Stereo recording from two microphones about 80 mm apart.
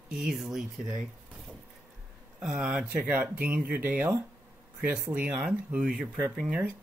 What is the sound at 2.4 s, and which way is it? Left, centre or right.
Speech, centre.